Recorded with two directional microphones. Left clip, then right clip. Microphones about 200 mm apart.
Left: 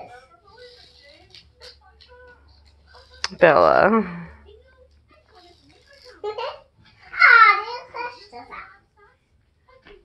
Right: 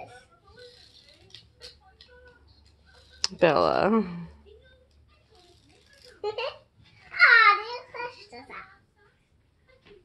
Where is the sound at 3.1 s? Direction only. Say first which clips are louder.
Left 7 dB; 20° right (ahead or behind).